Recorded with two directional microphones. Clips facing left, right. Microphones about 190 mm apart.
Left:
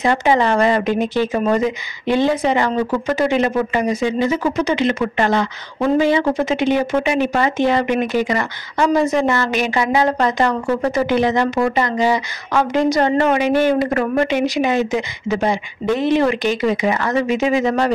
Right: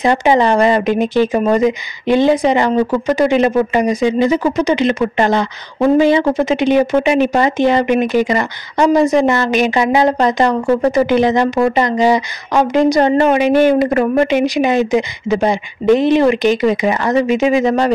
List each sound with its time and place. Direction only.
0.0 s speech: 15° right (ahead or behind)